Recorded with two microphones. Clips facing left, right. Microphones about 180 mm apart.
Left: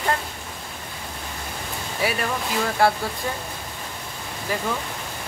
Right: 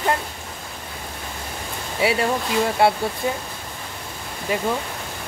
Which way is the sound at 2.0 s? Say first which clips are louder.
Right 5 dB; 25° right (ahead or behind).